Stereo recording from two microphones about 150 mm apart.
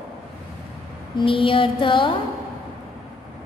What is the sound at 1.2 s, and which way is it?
Speech, 35° left (ahead or behind).